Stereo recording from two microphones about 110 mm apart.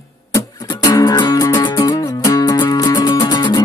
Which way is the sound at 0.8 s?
35° left (ahead or behind).